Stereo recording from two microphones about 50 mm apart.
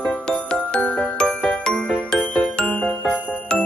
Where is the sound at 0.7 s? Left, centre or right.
Left.